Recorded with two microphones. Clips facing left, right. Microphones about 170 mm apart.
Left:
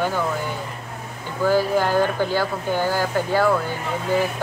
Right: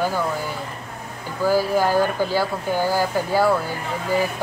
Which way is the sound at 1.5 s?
10° right (ahead or behind).